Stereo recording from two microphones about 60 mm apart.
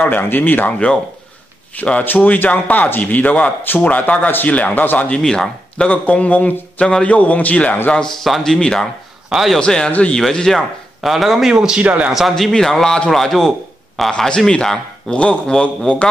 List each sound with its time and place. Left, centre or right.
0.0 s speech: left
1.8 s speech: left
5.1 s speech: centre
5.9 s speech: left
7.9 s a man's voice: centre
9.3 s a man's voice: centre
9.6 s a man's voice: centre
11.8 s a man's voice: right
12.1 s a man's voice: centre